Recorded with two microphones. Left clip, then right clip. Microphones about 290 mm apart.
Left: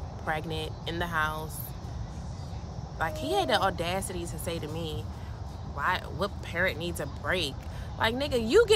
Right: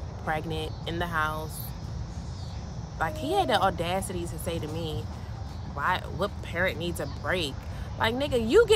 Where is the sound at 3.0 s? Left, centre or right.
Centre.